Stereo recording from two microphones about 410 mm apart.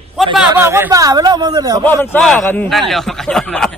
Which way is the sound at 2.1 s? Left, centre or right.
Centre.